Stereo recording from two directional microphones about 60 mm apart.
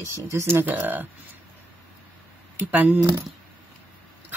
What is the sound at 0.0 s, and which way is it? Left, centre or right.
Speech, right.